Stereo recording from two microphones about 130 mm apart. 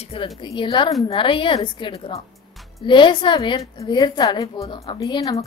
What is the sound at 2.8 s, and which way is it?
A woman's voice, 40° left (ahead or behind).